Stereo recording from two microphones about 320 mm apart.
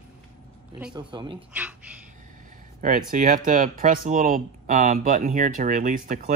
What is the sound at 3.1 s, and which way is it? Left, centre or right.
Speech, right.